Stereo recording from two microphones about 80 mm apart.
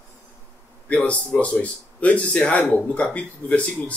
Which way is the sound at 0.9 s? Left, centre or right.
Centre.